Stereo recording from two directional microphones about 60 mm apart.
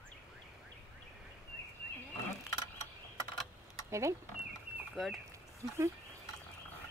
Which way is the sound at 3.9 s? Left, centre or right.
Right.